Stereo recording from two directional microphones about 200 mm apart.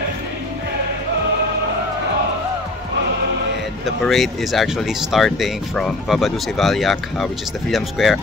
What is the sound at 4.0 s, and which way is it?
Speech, centre (ahead or behind).